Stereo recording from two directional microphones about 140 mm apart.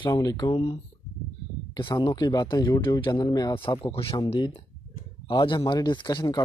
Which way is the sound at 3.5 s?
40° left (ahead or behind).